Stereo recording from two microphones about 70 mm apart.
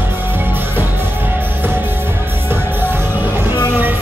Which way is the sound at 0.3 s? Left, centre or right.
Right.